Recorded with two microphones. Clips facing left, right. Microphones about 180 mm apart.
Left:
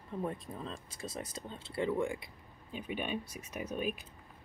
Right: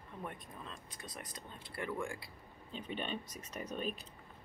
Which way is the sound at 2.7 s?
10° left (ahead or behind).